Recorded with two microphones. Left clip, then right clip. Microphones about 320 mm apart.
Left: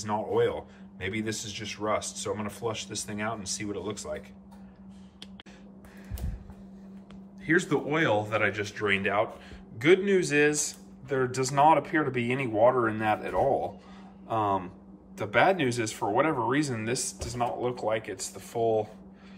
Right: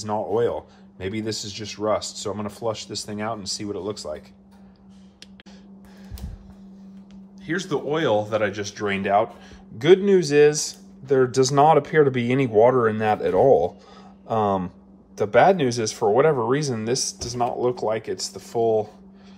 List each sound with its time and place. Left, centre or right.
0.0 s speech: centre
7.4 s speech: centre